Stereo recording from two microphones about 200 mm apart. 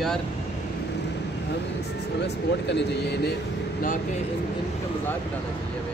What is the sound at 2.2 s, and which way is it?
Speech, 60° left (ahead or behind).